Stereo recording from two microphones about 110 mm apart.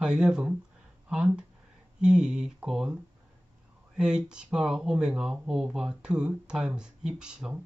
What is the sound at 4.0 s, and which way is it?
Speech, 10° right (ahead or behind).